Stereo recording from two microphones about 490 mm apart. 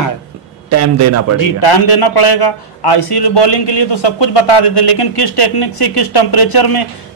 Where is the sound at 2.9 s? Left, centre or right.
Left.